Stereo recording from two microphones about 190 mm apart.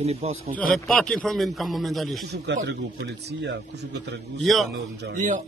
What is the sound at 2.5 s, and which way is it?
Speech, 65° right (ahead or behind).